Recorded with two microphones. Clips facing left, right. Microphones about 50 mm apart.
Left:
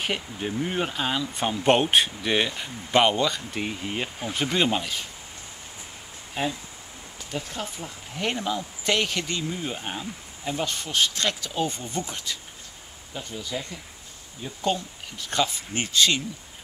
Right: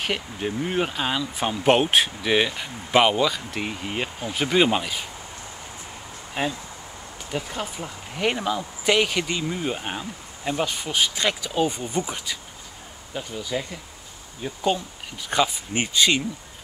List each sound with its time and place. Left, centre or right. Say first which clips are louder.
0.0 s speech: right 2 dB; centre
6.4 s speech: right 2 dB; centre
13.2 s speech: right 4 dB; centre